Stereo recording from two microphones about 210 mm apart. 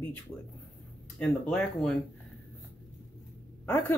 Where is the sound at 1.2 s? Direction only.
5° left (ahead or behind).